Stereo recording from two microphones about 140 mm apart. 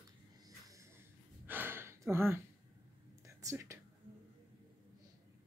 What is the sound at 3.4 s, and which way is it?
Speech, 20° right (ahead or behind).